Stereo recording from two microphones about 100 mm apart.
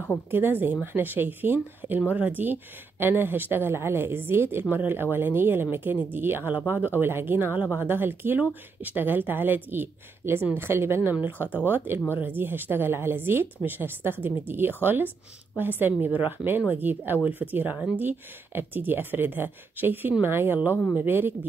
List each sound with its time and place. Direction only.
0.3 s speech: 20° right (ahead or behind)